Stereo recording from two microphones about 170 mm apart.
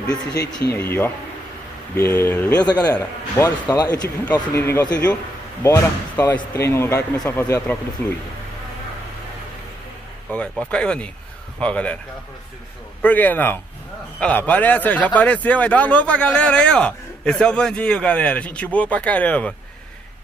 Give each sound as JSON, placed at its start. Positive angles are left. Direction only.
{"t": 0.7, "sound": "a man's voice", "side_deg": 15}
{"t": 10.3, "sound": "a man's voice", "side_deg": 5}
{"t": 13.0, "sound": "a man's voice", "side_deg": 10}